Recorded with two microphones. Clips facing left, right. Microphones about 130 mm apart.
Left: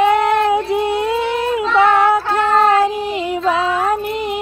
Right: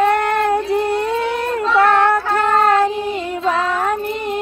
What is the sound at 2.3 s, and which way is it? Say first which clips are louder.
Child singing: left 1 dB; 5° left (ahead or behind).